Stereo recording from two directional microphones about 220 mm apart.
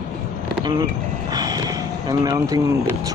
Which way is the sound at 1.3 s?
15° right (ahead or behind).